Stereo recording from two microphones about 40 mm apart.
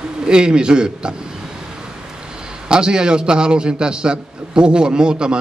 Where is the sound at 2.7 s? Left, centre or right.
Right.